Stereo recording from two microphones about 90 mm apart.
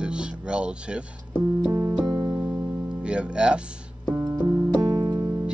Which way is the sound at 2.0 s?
45° right (ahead or behind).